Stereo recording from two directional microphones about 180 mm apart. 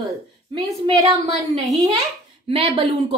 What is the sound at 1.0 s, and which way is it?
A woman's voice, 35° right (ahead or behind).